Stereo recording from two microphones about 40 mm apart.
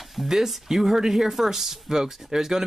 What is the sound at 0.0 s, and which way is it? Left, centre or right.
Speech, centre.